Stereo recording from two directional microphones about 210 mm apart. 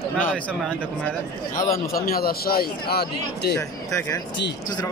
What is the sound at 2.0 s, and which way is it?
Speech, 45° left (ahead or behind).